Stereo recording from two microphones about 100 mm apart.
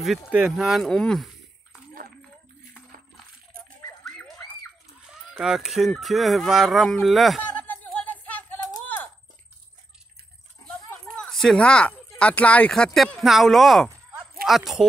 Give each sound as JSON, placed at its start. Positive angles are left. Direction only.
{"t": 0.5, "sound": "speech", "side_deg": -5}
{"t": 5.4, "sound": "speech", "side_deg": -5}
{"t": 7.5, "sound": "a sound", "side_deg": 15}
{"t": 11.1, "sound": "speech", "side_deg": 5}